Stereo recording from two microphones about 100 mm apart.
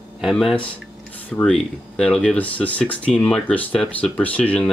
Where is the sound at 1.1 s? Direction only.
15° left (ahead or behind).